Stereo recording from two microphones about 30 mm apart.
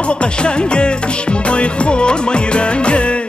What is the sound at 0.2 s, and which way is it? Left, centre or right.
Music, left.